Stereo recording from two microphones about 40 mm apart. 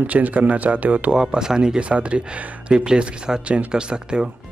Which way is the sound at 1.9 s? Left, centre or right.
Right.